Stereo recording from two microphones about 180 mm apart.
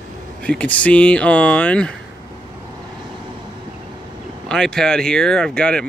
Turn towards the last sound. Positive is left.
turn(degrees=5)  # may be behind; listen again after turning